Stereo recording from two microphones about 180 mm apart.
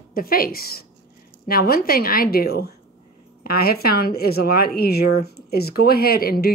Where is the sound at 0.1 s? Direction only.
55° left (ahead or behind).